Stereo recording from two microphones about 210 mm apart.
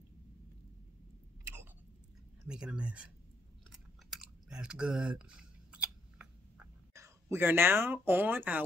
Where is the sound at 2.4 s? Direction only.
5° right (ahead or behind).